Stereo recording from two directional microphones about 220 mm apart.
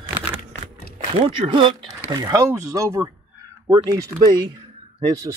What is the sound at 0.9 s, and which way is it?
Speech, 25° right (ahead or behind).